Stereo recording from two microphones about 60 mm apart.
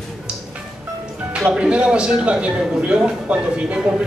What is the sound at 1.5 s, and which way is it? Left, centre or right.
Speech, centre.